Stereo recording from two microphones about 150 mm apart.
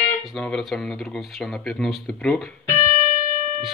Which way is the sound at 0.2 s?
5° left (ahead or behind).